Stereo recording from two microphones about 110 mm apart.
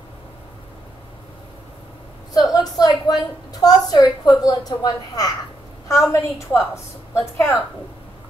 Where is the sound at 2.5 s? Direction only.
35° left (ahead or behind).